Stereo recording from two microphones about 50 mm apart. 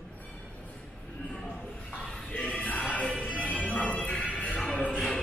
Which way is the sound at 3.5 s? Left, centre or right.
Left.